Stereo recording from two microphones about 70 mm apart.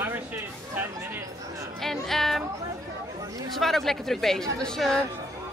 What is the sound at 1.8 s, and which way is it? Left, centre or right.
Speech, centre.